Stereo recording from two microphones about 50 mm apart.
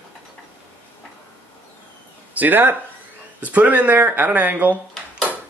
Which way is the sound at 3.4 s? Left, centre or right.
Right.